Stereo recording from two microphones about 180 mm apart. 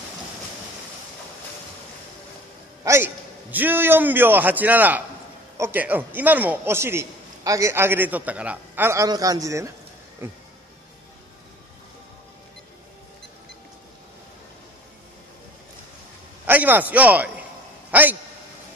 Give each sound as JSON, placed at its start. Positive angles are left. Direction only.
{"t": 2.8, "sound": "a man's voice", "side_deg": -15}
{"t": 16.4, "sound": "a man's voice", "side_deg": -10}